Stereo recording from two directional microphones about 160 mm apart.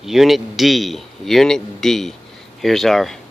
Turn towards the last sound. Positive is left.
turn(degrees=0)  # may be behind; listen again after turning